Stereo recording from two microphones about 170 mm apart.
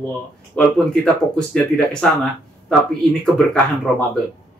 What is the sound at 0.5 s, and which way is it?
Speech, 5° left (ahead or behind).